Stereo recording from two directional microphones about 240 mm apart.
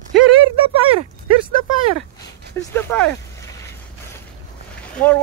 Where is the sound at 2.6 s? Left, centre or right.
Centre.